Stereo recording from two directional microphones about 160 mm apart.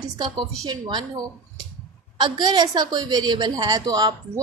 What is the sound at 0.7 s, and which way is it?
A woman's voice, 25° right (ahead or behind).